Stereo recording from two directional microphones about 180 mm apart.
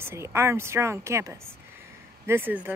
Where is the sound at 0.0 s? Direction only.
15° right (ahead or behind).